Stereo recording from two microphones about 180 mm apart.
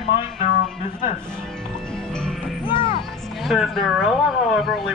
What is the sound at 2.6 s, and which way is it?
Music, 30° left (ahead or behind).